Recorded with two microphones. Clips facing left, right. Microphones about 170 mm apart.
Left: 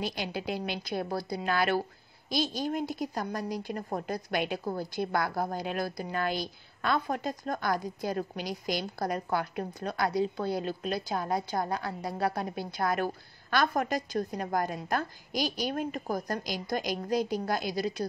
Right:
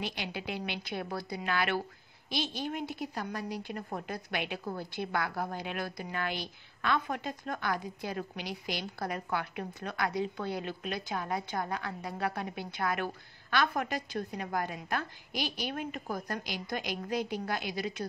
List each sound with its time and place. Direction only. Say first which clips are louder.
0.0 s a woman's voice: left 4 dB; 40° left (ahead or behind)